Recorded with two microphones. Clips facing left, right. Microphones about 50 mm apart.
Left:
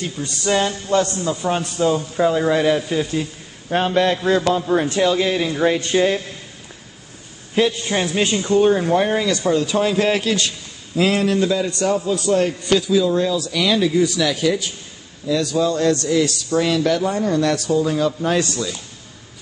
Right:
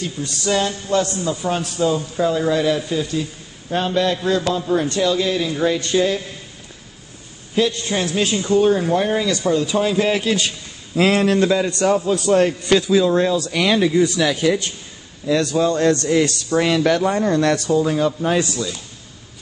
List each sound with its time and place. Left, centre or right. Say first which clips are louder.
0.2 s a man's voice: left 1 dB; centre; by 5.8 s left
5.8 s speech: even; centre
7.7 s a man's voice: left 1 dB; centre
11.0 s a man's voice: right 2 dB; right
12.3 s a man's voice: right 2 dB; right
13.0 s a man's voice: right 2 dB; right
15.2 s a man's voice: right 1 dB; right
17.8 s speech: right 1 dB; centre